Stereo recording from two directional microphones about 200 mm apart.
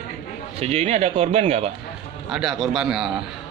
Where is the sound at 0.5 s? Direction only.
30° right (ahead or behind).